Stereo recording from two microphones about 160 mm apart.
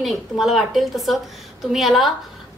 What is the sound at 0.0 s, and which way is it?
A woman's voice, centre (ahead or behind).